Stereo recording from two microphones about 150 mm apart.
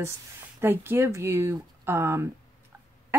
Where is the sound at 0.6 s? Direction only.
15° right (ahead or behind).